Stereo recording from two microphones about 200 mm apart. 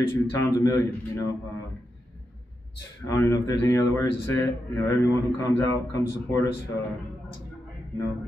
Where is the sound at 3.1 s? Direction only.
15° left (ahead or behind).